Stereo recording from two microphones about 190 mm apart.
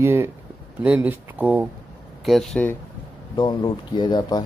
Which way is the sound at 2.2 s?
Centre (ahead or behind).